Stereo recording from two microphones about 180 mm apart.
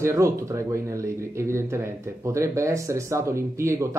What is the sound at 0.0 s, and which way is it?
Speech, 15° right (ahead or behind).